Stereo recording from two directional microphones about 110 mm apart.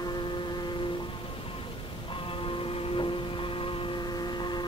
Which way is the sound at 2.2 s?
55° left (ahead or behind).